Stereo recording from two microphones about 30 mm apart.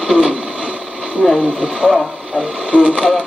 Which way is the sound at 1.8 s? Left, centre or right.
Right.